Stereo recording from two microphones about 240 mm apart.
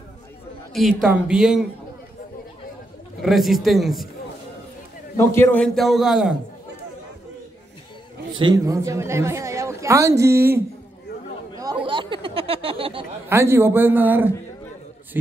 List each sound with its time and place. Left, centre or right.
0.7 s a man's voice: centre
3.2 s a man's voice: centre
5.1 s a man's voice: centre
8.4 s a woman's voice: centre
11.5 s a sound: centre
13.3 s a woman's voice: centre